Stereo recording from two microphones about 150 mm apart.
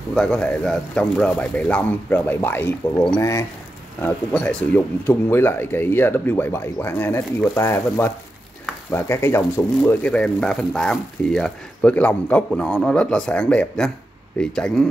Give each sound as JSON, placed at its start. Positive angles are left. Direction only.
{"t": 0.1, "sound": "speech", "side_deg": 5}